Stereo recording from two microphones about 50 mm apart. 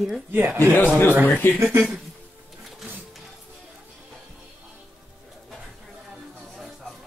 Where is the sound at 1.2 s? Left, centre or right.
Left.